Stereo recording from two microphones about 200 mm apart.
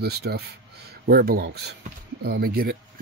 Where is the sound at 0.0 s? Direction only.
55° right (ahead or behind).